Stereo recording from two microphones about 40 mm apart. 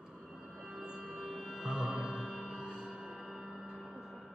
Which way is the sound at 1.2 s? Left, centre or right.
Centre.